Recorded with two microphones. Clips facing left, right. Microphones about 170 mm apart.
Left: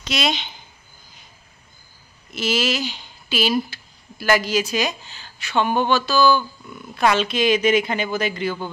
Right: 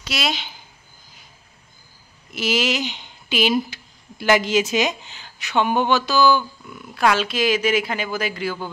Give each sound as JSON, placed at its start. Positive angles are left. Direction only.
{"t": 0.0, "sound": "speech", "side_deg": -5}
{"t": 2.3, "sound": "speech", "side_deg": -15}
{"t": 6.8, "sound": "speech", "side_deg": -5}